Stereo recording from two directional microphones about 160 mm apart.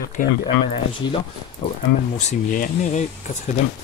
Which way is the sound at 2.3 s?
55° left (ahead or behind).